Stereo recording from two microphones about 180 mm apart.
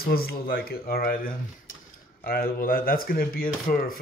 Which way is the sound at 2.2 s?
55° left (ahead or behind).